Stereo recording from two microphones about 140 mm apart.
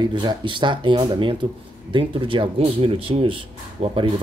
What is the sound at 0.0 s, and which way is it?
Speech, 35° right (ahead or behind).